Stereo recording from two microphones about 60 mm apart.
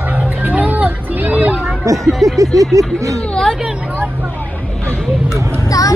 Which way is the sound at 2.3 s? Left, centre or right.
Right.